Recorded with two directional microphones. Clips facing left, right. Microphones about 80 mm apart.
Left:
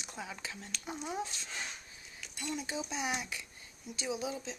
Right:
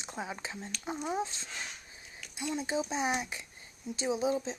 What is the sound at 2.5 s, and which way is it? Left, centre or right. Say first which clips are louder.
Speech: right 6 dB; right.